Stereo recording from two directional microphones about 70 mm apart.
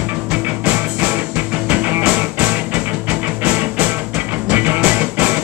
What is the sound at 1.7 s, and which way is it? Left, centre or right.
Music, right.